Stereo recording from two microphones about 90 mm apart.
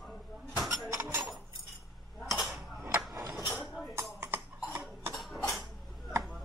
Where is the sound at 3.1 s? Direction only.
35° right (ahead or behind).